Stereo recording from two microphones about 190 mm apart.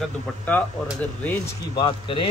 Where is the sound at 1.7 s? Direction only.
25° left (ahead or behind).